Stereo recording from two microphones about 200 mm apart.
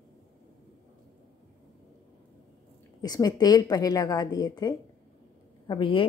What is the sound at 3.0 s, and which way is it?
A woman's voice, 20° left (ahead or behind).